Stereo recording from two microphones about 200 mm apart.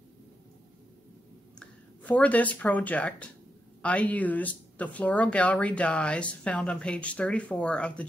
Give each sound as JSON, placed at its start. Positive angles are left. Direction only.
{"t": 2.0, "sound": "speech", "side_deg": 5}